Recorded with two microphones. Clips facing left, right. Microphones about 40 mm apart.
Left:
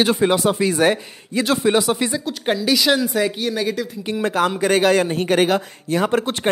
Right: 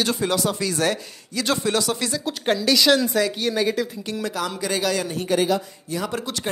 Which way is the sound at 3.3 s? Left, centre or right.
Centre.